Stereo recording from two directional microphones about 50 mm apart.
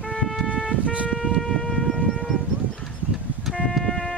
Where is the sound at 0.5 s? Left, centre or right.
Left.